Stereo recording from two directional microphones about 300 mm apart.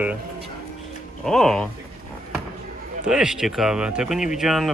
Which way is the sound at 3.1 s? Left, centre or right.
Centre.